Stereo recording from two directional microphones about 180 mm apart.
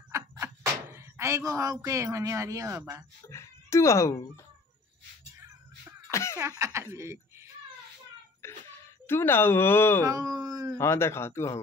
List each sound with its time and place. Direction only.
0.9 s speech: 15° right (ahead or behind)
3.3 s speech: 15° left (ahead or behind)
5.4 s music: 15° right (ahead or behind)
6.0 s cough: 15° left (ahead or behind)
6.6 s speech: 15° right (ahead or behind)
9.0 s speech: 10° left (ahead or behind)
10.0 s speech: 20° right (ahead or behind)
10.8 s speech: 15° left (ahead or behind)